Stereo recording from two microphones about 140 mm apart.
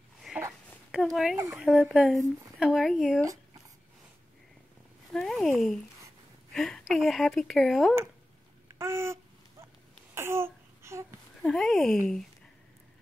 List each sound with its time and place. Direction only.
0.3 s a sound: 5° right (ahead or behind)
0.9 s a woman's voice: 5° right (ahead or behind)
5.1 s a woman's voice: centre (ahead or behind)
8.7 s babbling: 20° right (ahead or behind)
10.1 s a sound: 20° right (ahead or behind)
11.4 s a woman's voice: 5° left (ahead or behind)